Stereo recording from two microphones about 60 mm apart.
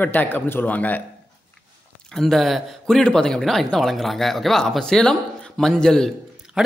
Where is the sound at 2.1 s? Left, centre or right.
Centre.